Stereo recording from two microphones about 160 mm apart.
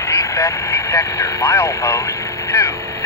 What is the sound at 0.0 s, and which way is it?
Speech, 20° left (ahead or behind).